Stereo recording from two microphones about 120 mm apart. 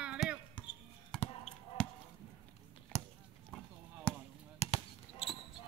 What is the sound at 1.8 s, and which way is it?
Chop, 5° left (ahead or behind).